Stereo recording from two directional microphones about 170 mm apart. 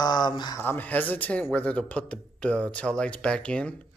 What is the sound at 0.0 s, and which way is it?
Speech, 25° left (ahead or behind).